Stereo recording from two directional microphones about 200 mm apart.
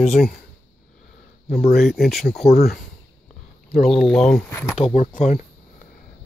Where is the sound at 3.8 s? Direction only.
Centre (ahead or behind).